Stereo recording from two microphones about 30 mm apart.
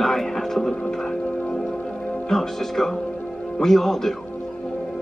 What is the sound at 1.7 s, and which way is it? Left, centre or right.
Music, left.